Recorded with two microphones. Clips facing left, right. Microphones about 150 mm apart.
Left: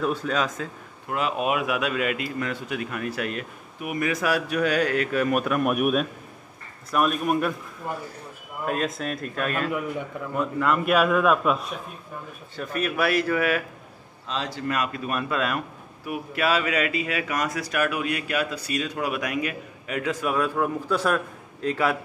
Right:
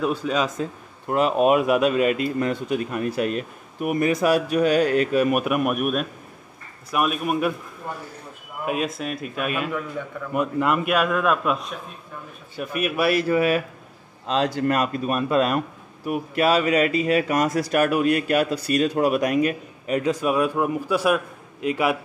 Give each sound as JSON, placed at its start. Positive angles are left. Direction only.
{"t": 0.3, "sound": "a man's voice", "side_deg": -15}
{"t": 1.0, "sound": "speech", "side_deg": -40}
{"t": 3.8, "sound": "speech", "side_deg": -40}
{"t": 4.1, "sound": "speech", "side_deg": -25}
{"t": 5.7, "sound": "a man's voice", "side_deg": 0}
{"t": 8.6, "sound": "a man's voice", "side_deg": -5}
{"t": 9.7, "sound": "a man's voice", "side_deg": 15}
{"t": 10.3, "sound": "a man's voice", "side_deg": -15}
{"t": 10.9, "sound": "a man's voice", "side_deg": 0}
{"t": 12.5, "sound": "a man's voice", "side_deg": -10}
{"t": 13.1, "sound": "speech", "side_deg": -25}
{"t": 14.2, "sound": "speech", "side_deg": -60}
{"t": 14.9, "sound": "speech", "side_deg": -30}
{"t": 20.2, "sound": "a man's voice", "side_deg": -15}